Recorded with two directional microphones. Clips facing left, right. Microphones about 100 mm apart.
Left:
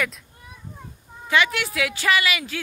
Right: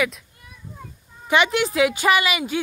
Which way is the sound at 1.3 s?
20° right (ahead or behind).